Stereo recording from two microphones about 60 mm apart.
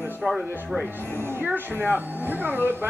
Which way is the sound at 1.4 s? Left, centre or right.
Right.